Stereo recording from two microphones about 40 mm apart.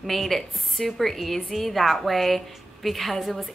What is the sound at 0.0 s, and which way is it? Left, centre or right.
A woman's voice, centre.